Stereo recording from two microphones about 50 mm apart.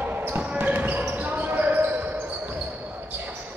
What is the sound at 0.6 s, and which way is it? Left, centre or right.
Basketball bounce, right.